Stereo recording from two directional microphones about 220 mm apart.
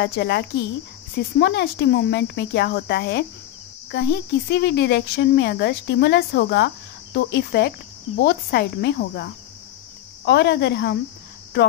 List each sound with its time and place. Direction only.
0.0 s speech: 50° left (ahead or behind)